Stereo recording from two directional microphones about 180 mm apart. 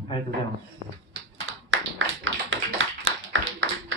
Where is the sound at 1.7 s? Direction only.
90° right.